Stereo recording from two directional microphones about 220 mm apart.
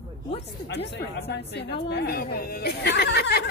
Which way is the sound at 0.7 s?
50° left (ahead or behind).